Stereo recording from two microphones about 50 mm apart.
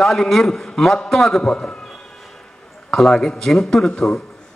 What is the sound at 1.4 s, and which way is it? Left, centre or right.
Speech, centre.